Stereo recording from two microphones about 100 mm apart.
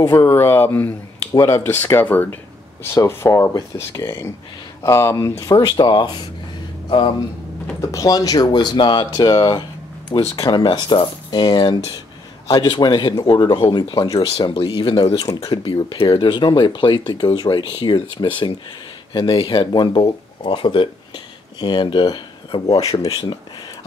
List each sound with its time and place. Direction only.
0.0 s speech: 30° left (ahead or behind); by 6.1 s 45° left (ahead or behind)
7.8 s speech: 35° left (ahead or behind)
14.1 s speech: 65° left (ahead or behind); by 23.0 s 40° left (ahead or behind)
23.0 s speech: 55° left (ahead or behind)